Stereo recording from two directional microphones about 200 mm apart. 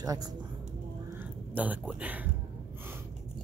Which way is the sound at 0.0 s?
20° right (ahead or behind).